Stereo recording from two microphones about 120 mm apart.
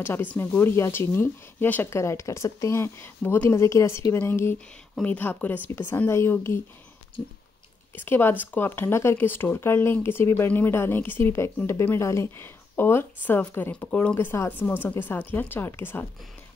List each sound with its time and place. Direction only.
0.0 s speech: 15° left (ahead or behind)
7.9 s speech: 15° left (ahead or behind)
14.1 s speech: 20° left (ahead or behind)